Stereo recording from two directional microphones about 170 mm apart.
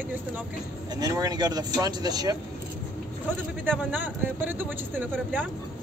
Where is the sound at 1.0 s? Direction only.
20° right (ahead or behind).